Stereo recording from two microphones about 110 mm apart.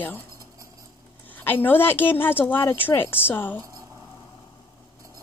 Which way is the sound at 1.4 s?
20° left (ahead or behind).